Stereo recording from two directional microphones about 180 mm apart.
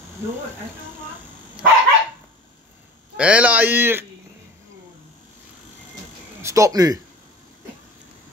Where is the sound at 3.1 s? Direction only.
5° right (ahead or behind).